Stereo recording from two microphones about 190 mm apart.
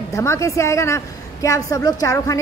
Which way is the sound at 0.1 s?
15° left (ahead or behind).